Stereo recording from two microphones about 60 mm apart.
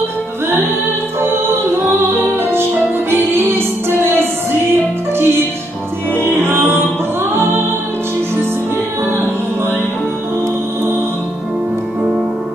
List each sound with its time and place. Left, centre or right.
1.2 s music: right